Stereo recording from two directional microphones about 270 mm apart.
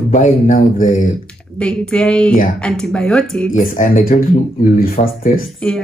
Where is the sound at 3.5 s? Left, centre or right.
Left.